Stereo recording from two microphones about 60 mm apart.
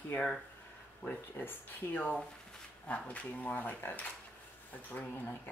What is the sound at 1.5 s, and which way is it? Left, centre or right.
Speech, left.